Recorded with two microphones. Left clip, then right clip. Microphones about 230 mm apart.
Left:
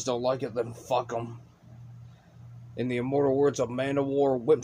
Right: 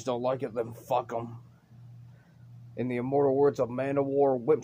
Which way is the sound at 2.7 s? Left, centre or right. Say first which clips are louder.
Even; centre.